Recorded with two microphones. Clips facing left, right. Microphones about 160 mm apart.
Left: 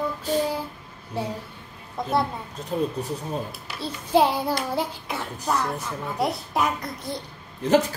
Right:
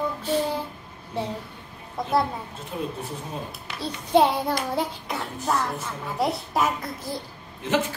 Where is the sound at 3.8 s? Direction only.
Centre (ahead or behind).